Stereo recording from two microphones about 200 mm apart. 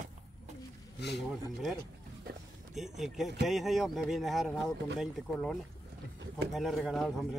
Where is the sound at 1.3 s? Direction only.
Centre (ahead or behind).